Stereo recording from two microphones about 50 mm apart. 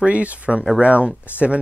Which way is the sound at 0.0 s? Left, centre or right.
Right.